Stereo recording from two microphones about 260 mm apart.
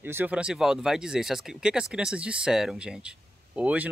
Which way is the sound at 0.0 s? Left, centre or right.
Centre.